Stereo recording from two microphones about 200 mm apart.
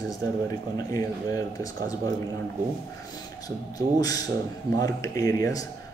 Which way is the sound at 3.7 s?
20° left (ahead or behind).